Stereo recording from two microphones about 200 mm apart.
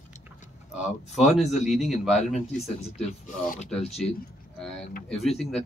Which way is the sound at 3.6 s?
Centre (ahead or behind).